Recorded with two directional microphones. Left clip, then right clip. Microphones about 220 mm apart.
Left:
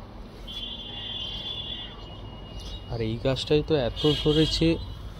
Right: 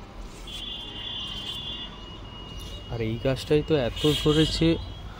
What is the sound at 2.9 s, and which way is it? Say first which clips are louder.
Speech: even; 5° right (ahead or behind).